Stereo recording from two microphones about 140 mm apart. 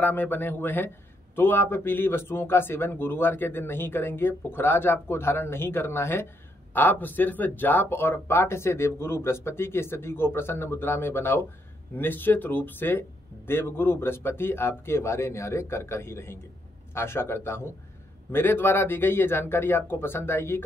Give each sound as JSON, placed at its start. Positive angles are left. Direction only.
{"t": 0.0, "sound": "a man's voice", "side_deg": 15}